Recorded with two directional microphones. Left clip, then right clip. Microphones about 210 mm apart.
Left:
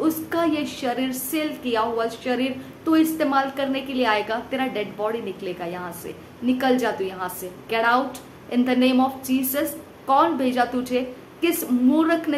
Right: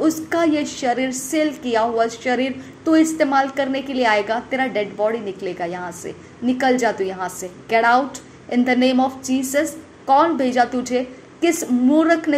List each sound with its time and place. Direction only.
0.0 s a woman's voice: 25° right (ahead or behind)